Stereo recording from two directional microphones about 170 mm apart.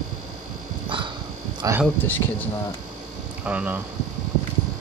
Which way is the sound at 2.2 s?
20° left (ahead or behind).